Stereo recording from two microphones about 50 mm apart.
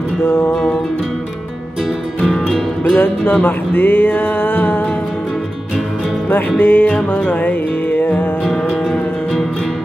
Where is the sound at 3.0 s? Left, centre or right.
Left.